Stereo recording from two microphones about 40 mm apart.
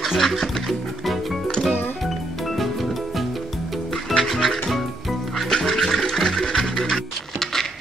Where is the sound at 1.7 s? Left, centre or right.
Left.